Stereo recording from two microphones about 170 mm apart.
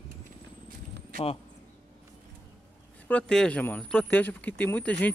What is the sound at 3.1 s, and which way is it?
Speech, 5° left (ahead or behind).